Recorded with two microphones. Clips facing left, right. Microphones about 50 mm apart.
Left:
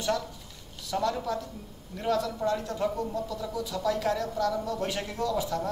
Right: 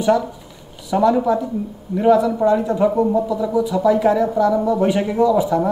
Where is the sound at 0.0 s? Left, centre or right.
Centre.